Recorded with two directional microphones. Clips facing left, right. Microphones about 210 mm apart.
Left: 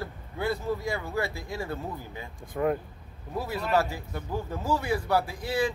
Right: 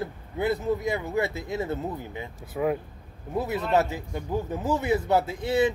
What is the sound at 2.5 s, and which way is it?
Speech, 5° right (ahead or behind).